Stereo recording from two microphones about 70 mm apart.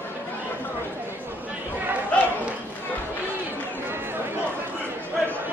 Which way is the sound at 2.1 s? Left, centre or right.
Centre.